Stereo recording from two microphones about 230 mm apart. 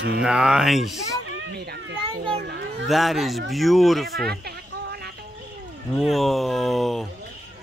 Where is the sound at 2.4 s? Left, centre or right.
Right.